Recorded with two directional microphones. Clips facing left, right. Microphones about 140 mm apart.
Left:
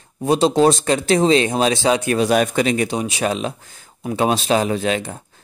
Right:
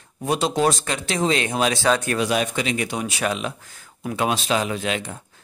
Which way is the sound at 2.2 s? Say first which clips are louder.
Left 6 dB; 45° left (ahead or behind).